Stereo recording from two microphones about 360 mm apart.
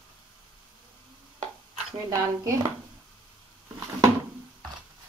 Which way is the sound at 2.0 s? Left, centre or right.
Centre.